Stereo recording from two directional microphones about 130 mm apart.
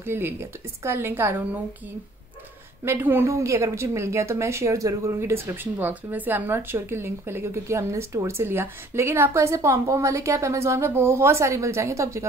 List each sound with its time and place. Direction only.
0.0 s a woman's voice: 20° right (ahead or behind)
2.8 s a woman's voice: 15° right (ahead or behind)